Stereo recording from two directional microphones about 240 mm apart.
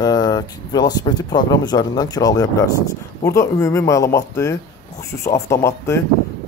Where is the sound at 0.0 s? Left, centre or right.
Centre.